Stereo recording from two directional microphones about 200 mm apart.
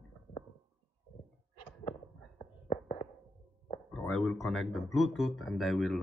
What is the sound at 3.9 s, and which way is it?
Speech, 5° left (ahead or behind).